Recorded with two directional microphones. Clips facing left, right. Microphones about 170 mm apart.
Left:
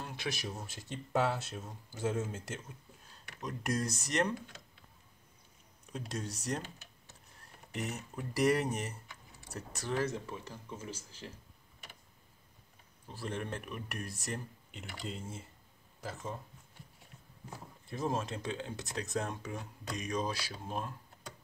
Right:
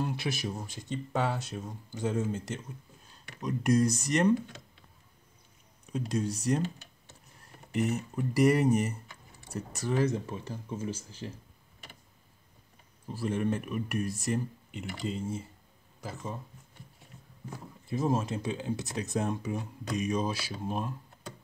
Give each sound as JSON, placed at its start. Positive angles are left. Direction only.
{"t": 0.0, "sound": "speech", "side_deg": -5}
{"t": 5.9, "sound": "speech", "side_deg": 0}
{"t": 7.7, "sound": "speech", "side_deg": 0}
{"t": 9.9, "sound": "speech", "side_deg": -20}
{"t": 13.1, "sound": "speech", "side_deg": -5}
{"t": 17.8, "sound": "speech", "side_deg": -5}